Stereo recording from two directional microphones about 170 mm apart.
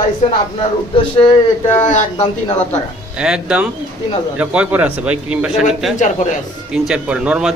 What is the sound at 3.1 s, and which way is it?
A man's voice, 5° right (ahead or behind).